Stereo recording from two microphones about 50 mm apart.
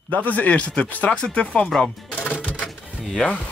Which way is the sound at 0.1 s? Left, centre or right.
Left.